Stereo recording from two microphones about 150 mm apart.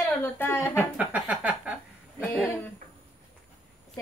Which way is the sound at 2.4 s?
15° left (ahead or behind).